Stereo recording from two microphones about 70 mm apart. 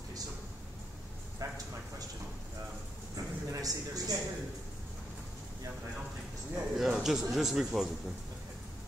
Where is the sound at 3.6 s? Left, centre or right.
Right.